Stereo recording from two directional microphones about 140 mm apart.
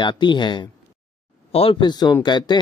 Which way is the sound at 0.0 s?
35° left (ahead or behind).